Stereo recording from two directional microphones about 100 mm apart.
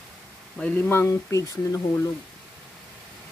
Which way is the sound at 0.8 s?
25° left (ahead or behind).